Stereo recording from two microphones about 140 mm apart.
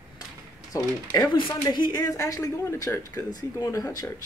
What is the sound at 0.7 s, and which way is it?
Speech, 25° left (ahead or behind).